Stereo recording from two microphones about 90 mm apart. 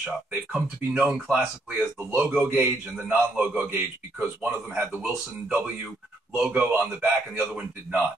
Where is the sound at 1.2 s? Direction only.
Centre (ahead or behind).